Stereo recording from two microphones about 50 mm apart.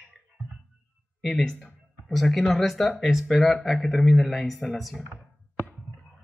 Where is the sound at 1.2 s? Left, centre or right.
Centre.